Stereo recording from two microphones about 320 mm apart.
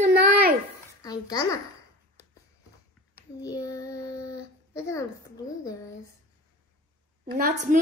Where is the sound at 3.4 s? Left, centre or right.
Centre.